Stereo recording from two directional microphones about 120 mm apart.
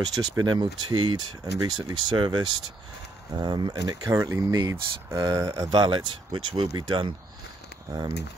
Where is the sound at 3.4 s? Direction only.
40° right (ahead or behind).